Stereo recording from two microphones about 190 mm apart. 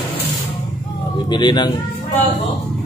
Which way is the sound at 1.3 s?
25° left (ahead or behind).